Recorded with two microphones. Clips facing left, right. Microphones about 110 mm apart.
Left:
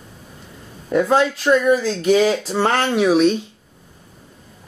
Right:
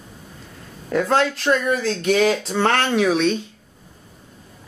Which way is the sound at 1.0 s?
5° left (ahead or behind).